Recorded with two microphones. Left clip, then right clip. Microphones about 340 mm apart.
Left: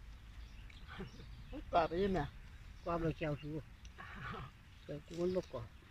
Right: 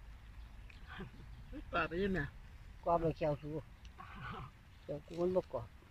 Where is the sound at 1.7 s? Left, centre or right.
Centre.